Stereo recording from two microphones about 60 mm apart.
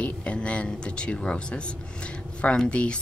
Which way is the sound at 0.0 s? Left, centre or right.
Centre.